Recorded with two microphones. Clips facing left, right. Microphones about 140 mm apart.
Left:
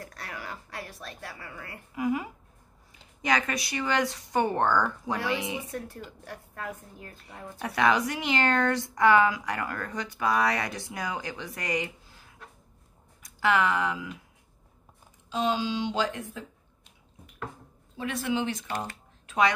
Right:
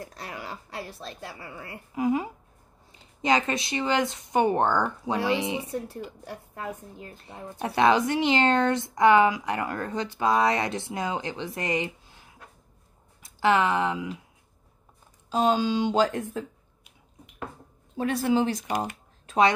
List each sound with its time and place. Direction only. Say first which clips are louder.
0.0 s a woman's voice: right 2 dB; 25° right (ahead or behind)
13.2 s speech: right 3 dB; 25° right (ahead or behind)
15.2 s speech: right 5 dB; 45° right (ahead or behind)
17.9 s speech: right 6 dB; 40° right (ahead or behind)
19.2 s a sound: right 3 dB; 30° right (ahead or behind)